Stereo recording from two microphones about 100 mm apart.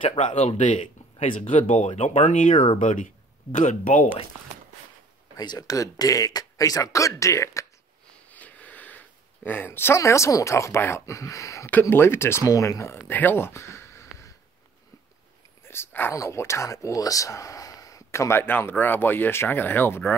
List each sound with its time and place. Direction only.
0.0 s speech: 75° left (ahead or behind)
5.4 s speech: 40° left (ahead or behind)
8.3 s speech: 15° left (ahead or behind)
13.1 s a sound: 20° left (ahead or behind)
15.6 s a sound: 25° left (ahead or behind)
16.2 s speech: 30° left (ahead or behind)